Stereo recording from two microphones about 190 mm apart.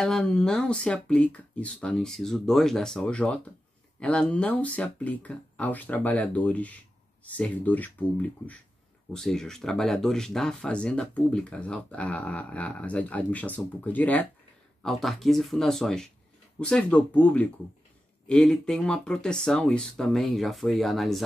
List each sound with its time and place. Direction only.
0.0 s speech: 5° left (ahead or behind)